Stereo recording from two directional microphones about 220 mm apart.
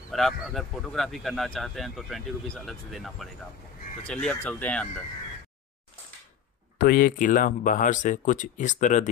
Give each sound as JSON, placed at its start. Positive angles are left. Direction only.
{"t": 0.1, "sound": "speech", "side_deg": 0}
{"t": 6.8, "sound": "speech", "side_deg": 40}